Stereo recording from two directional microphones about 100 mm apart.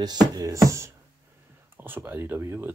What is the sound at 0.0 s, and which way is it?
Music, 40° right (ahead or behind).